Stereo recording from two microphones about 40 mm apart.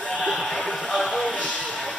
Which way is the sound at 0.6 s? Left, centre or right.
Left.